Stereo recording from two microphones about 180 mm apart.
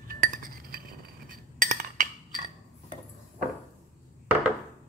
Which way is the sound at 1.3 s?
45° right (ahead or behind).